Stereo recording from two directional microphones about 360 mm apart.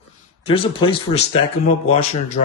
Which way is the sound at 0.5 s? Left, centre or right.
Centre.